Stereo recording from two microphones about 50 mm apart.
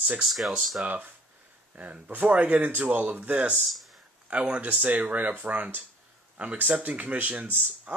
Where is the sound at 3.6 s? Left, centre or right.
Centre.